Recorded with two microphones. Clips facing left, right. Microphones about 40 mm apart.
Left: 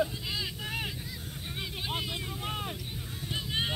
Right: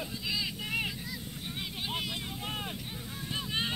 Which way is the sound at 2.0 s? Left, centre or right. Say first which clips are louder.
Left 1 dB; centre.